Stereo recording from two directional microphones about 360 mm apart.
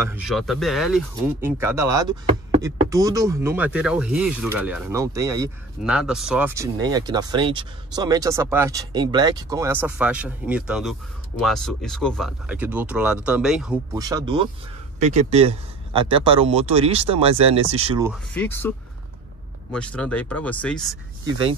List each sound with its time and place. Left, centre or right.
0.0 s speech: centre
18.3 s speech: centre